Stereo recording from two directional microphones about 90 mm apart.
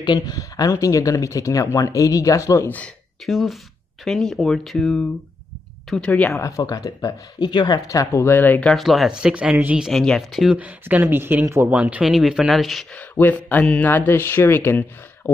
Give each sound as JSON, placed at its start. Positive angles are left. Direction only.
{"t": 0.0, "sound": "speech", "side_deg": 55}
{"t": 0.4, "sound": "speech", "side_deg": 35}
{"t": 3.3, "sound": "speech", "side_deg": 0}
{"t": 6.3, "sound": "speech", "side_deg": 40}
{"t": 7.3, "sound": "speech", "side_deg": 50}
{"t": 8.7, "sound": "speech", "side_deg": 0}
{"t": 9.1, "sound": "speech", "side_deg": -10}
{"t": 9.8, "sound": "speech", "side_deg": 5}
{"t": 10.5, "sound": "speech", "side_deg": -15}
{"t": 12.9, "sound": "speech", "side_deg": 20}